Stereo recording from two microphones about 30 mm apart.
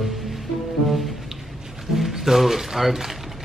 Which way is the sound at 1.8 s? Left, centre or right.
Centre.